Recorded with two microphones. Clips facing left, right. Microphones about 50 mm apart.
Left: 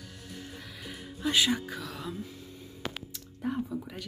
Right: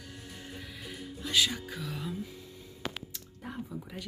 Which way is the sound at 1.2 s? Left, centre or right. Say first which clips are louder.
Left 3 dB; left.